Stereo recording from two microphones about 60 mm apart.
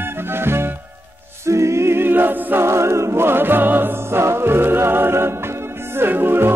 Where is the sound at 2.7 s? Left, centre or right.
Right.